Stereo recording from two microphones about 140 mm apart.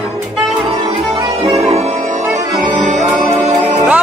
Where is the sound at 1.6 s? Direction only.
50° right (ahead or behind).